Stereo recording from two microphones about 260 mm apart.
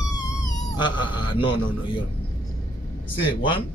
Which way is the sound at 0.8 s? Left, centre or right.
Centre.